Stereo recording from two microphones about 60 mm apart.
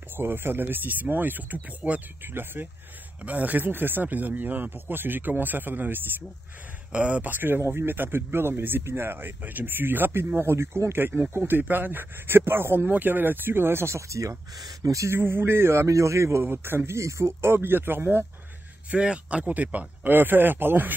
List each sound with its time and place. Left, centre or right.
0.2 s speech: right
6.9 s speech: centre; by 15.1 s right
15.1 s a man's voice: right
18.9 s speech: centre; by 20.9 s right